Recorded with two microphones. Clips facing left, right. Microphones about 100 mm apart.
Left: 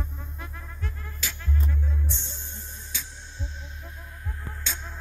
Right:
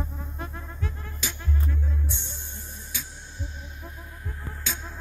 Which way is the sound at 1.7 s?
10° right (ahead or behind).